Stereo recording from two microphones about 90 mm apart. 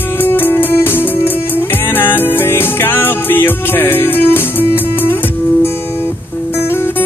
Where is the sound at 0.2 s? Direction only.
25° left (ahead or behind).